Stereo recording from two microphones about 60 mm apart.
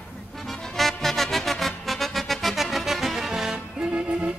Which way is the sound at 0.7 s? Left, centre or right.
Centre.